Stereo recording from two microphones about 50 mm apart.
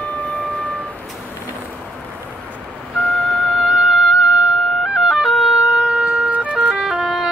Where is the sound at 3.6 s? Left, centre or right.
Right.